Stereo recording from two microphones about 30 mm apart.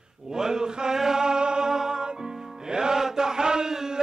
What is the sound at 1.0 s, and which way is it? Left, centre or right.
Music, centre.